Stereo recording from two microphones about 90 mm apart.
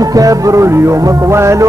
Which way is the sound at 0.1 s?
40° right (ahead or behind).